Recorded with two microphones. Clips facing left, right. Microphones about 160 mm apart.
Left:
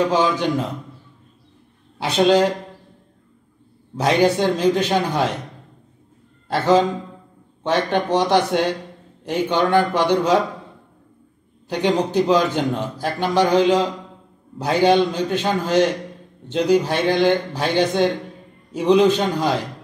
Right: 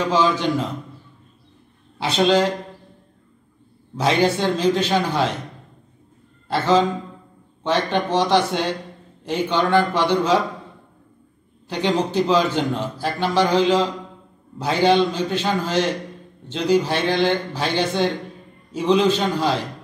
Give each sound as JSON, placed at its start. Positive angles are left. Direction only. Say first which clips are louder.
{"t": 0.1, "sound": "a man's voice", "louder": "even", "side_deg": 15}
{"t": 2.0, "sound": "a man's voice", "louder": "left 2 dB", "side_deg": 10}
{"t": 4.0, "sound": "a man's voice", "louder": "left 2 dB", "side_deg": 15}
{"t": 6.5, "sound": "a man's voice", "louder": "left 1 dB", "side_deg": 10}
{"t": 11.7, "sound": "a man's voice", "louder": "left 2 dB", "side_deg": 10}